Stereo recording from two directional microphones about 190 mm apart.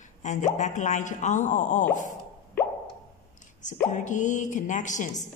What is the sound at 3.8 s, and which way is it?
A woman's voice, 40° left (ahead or behind).